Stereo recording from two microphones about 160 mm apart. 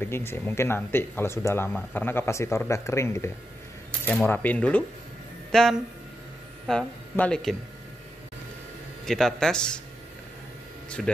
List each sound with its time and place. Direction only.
0.0 s speech: 15° left (ahead or behind)
9.0 s speech: centre (ahead or behind)
11.0 s speech: centre (ahead or behind)